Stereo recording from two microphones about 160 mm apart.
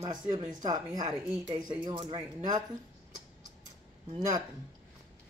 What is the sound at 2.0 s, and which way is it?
Speech, 40° right (ahead or behind).